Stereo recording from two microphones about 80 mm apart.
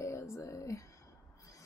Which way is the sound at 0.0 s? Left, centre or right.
Left.